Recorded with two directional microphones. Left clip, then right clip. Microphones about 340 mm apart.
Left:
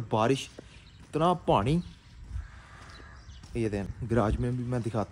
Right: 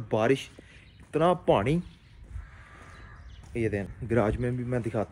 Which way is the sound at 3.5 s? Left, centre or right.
Centre.